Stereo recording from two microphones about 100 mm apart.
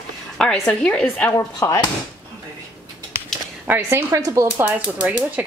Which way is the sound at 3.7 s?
25° right (ahead or behind).